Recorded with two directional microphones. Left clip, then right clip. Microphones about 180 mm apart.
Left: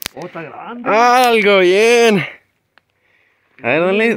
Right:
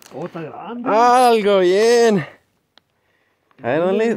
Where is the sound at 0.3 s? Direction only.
55° right (ahead or behind).